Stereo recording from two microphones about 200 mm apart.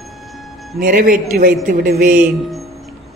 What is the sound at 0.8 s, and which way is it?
A man's voice, 45° right (ahead or behind).